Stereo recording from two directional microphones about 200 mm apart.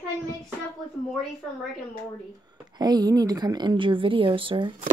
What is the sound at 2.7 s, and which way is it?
Speech, 20° right (ahead or behind).